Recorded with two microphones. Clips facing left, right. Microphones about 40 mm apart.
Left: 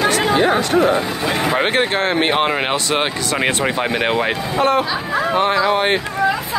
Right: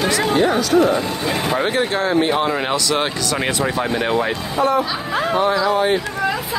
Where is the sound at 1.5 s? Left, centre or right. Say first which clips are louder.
Left 2 dB; left.